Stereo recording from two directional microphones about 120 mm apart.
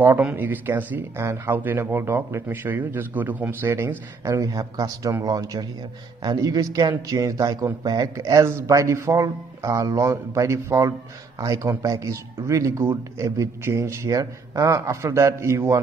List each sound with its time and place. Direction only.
0.0 s speech: 15° right (ahead or behind)